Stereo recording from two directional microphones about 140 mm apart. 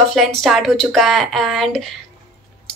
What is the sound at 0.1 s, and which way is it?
A woman's voice, centre (ahead or behind).